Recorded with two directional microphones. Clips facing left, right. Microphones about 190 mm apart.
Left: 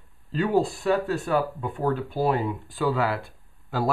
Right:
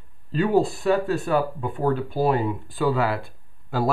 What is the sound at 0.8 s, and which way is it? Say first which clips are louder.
Speech: right 2 dB; 15° right (ahead or behind).